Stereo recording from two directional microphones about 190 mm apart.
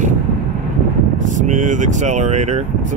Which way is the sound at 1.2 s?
40° right (ahead or behind).